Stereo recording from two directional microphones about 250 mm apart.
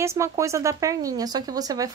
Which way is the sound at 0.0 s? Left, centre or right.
Centre.